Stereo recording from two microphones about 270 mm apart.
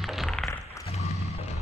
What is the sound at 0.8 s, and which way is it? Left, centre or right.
Music, left.